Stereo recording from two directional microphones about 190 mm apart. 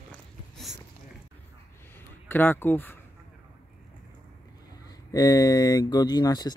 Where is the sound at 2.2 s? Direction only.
10° left (ahead or behind).